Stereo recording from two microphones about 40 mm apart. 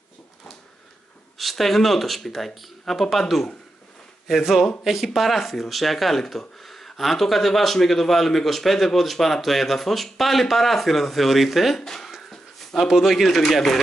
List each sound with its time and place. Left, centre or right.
1.4 s speech: centre
4.3 s a man's voice: centre
11.8 s speech: centre
12.2 s a sound: centre
12.8 s speech: centre